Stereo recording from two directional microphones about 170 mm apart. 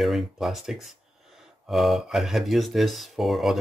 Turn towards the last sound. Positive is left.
turn(degrees=0)  # may be behind; listen again after turning